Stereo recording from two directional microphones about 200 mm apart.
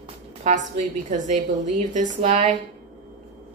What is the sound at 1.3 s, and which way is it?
A woman's voice, 40° right (ahead or behind).